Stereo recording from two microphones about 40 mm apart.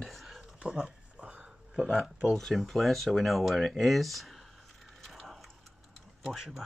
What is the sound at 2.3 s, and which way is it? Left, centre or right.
Speech, centre.